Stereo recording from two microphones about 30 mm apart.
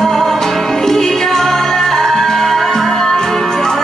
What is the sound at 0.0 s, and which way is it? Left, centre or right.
Music, centre.